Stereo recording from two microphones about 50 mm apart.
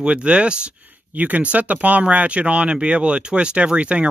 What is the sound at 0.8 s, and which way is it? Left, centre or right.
Speech, right.